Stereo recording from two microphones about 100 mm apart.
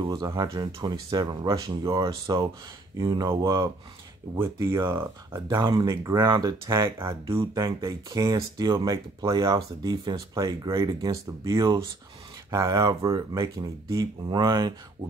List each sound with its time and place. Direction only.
0.0 s speech: 45° right (ahead or behind)
3.3 s speech: 30° right (ahead or behind)
5.6 s speech: 45° right (ahead or behind)